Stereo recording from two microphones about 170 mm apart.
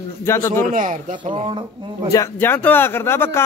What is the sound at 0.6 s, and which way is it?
Speech, 50° right (ahead or behind).